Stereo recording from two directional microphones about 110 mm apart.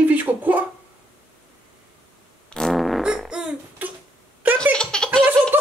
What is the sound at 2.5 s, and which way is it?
Fart, 5° left (ahead or behind).